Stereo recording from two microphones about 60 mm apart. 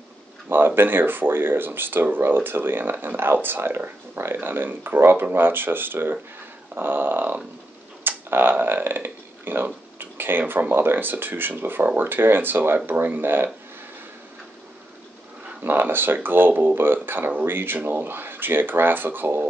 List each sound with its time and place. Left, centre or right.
0.5 s speech: right
9.9 s a sound: right
10.7 s speech: right
15.6 s speech: right